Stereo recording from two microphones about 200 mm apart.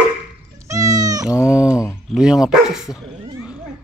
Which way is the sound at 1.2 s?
15° left (ahead or behind).